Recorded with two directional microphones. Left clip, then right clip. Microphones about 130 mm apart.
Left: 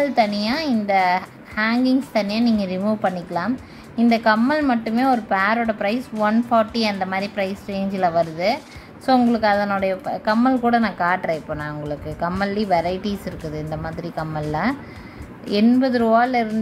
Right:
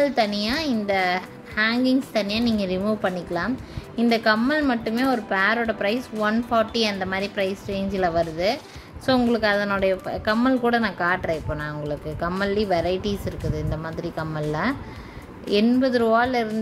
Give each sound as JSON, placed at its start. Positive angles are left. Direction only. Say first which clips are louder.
{"t": 0.0, "sound": "a woman's voice", "louder": "left 2 dB", "side_deg": -20}